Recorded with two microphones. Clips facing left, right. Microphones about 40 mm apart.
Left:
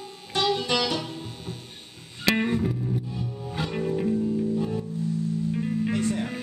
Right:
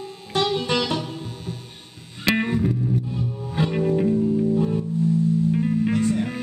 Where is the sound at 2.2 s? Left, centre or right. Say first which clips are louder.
Right 2 dB; centre.